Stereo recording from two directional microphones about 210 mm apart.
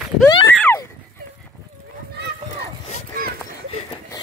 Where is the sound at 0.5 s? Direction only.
10° left (ahead or behind).